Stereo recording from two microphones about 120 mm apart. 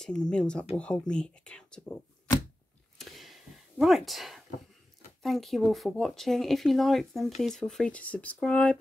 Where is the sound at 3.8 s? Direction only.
Centre (ahead or behind).